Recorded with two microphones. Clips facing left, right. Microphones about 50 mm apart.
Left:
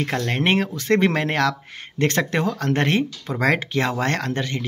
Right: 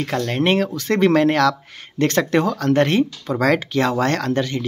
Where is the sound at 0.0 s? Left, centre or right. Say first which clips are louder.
Right 2 dB; left.